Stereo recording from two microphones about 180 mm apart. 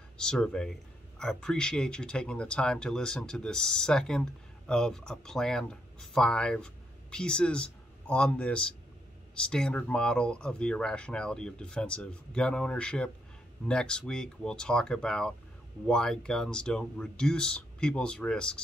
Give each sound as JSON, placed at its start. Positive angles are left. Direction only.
{"t": 0.2, "sound": "speech", "side_deg": 5}